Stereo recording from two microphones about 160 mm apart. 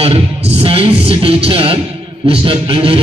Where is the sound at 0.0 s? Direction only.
35° right (ahead or behind).